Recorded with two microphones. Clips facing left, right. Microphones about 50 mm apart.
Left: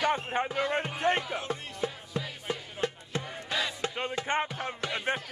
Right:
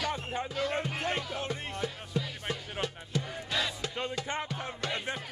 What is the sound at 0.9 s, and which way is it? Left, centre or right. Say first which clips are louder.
Music: left 5 dB; left.